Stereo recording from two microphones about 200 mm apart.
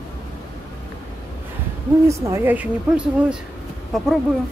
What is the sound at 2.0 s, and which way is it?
A woman's voice, 15° right (ahead or behind).